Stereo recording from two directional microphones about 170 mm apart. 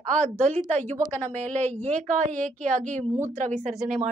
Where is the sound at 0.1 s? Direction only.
45° right (ahead or behind).